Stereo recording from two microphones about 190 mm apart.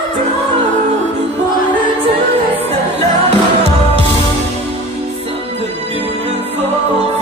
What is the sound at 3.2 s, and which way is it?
Music, 35° right (ahead or behind).